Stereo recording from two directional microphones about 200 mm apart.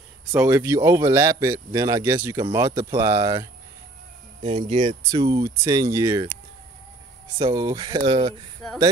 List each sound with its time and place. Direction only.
0.3 s speech: 10° right (ahead or behind)
7.3 s speech: 20° right (ahead or behind)